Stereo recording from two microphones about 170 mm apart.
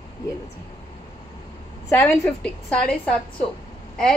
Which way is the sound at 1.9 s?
15° left (ahead or behind).